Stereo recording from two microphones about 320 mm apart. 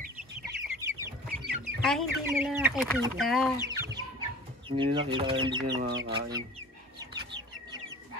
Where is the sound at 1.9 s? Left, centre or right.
Centre.